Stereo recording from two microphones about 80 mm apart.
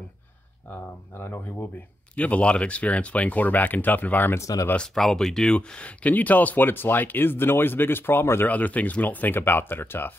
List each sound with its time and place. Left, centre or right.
0.7 s speech: left
2.1 s speech: centre
4.4 s speech: left
4.7 s speech: centre; by 10.1 s left